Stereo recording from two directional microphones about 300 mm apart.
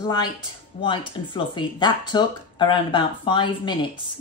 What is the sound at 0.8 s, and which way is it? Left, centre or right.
A woman's voice, centre.